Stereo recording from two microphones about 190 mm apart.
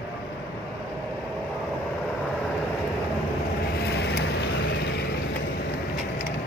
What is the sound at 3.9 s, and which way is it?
Vehicle, 60° left (ahead or behind).